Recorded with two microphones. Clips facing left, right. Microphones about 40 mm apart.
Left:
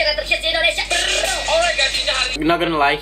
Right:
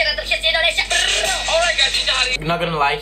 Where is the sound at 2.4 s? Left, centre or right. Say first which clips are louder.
Left 3 dB; centre.